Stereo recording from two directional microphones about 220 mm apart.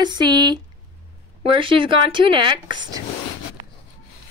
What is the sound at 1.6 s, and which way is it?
Speech, 25° right (ahead or behind).